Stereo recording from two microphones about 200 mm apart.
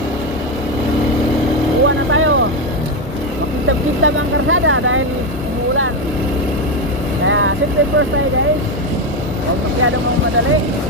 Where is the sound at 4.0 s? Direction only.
80° right.